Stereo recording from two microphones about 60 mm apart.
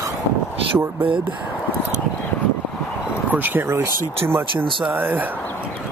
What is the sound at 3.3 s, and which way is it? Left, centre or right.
Speech, right.